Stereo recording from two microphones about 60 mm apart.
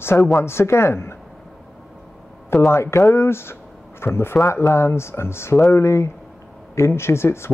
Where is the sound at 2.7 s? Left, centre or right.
Left.